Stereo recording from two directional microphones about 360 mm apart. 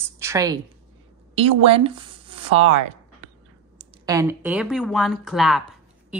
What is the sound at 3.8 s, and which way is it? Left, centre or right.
Speech, centre.